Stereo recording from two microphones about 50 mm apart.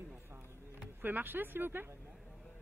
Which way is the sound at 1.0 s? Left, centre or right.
Right.